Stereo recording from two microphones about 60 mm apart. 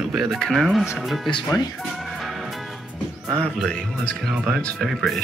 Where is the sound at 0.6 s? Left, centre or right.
Centre.